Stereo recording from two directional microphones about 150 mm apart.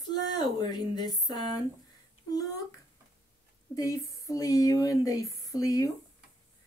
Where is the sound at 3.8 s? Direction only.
20° left (ahead or behind).